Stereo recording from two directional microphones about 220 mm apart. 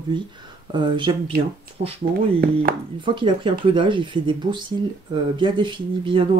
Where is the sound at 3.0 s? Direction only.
20° right (ahead or behind).